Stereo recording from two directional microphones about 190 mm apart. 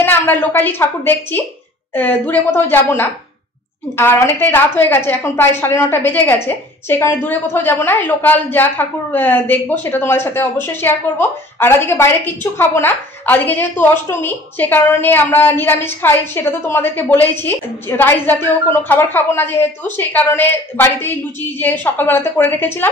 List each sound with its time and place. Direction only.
0.0 s a woman's voice: 10° left (ahead or behind)